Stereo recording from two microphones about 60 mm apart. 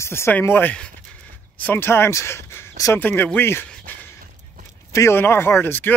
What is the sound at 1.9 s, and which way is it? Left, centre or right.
Speech, left.